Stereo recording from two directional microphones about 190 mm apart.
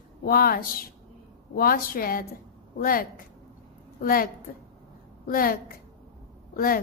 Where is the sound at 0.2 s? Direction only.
50° left (ahead or behind).